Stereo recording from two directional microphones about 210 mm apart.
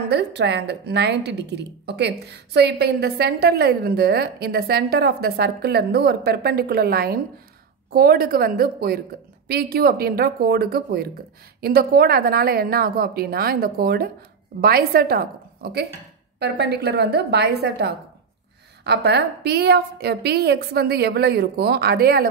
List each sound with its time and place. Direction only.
0.1 s a woman's voice: 55° right (ahead or behind)